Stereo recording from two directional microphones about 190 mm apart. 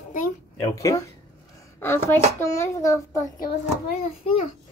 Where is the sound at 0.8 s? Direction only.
20° left (ahead or behind).